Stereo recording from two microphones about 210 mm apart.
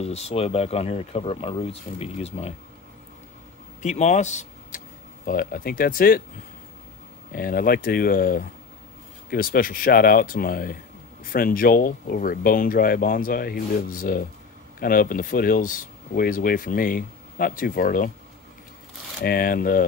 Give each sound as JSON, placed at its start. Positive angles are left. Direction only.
{"t": 0.0, "sound": "speech", "side_deg": 30}
{"t": 3.8, "sound": "speech", "side_deg": 35}
{"t": 7.3, "sound": "speech", "side_deg": 45}
{"t": 19.2, "sound": "speech", "side_deg": 45}